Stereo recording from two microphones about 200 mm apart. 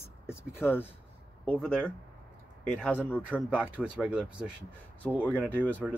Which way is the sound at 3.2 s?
5° right (ahead or behind).